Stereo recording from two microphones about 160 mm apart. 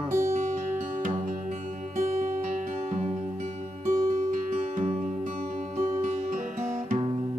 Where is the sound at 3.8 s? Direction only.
50° right (ahead or behind).